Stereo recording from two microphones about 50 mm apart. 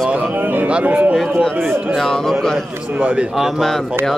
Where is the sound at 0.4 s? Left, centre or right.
Right.